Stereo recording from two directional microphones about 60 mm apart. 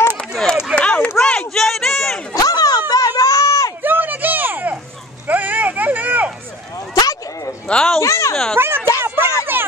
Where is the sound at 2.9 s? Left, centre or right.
Left.